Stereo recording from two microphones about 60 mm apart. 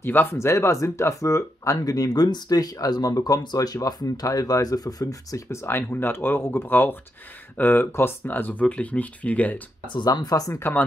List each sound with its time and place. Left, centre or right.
0.0 s speech: left
0.4 s speech: left
5.5 s speech: left
5.8 s speech: left
10.0 s speech: left